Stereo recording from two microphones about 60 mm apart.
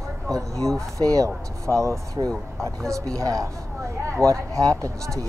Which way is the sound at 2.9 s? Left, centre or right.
Right.